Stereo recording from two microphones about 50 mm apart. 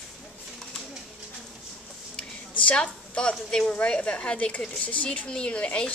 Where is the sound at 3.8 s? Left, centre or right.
Left.